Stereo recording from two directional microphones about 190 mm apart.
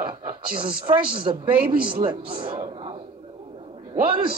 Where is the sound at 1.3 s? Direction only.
35° right (ahead or behind).